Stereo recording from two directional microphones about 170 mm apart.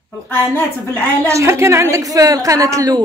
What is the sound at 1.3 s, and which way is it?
A woman's voice, 15° right (ahead or behind).